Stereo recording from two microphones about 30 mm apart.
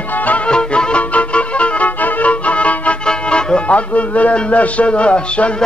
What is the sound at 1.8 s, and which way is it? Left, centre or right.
Music, left.